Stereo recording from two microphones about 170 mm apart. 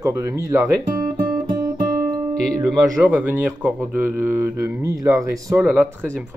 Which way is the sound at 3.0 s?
10° right (ahead or behind).